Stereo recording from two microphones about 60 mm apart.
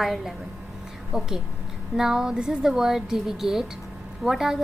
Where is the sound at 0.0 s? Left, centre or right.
Centre.